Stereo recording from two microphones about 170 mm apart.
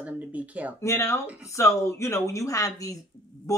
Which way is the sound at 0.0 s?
10° right (ahead or behind).